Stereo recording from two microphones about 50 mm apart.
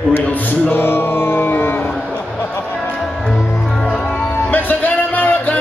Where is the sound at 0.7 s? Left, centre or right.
Left.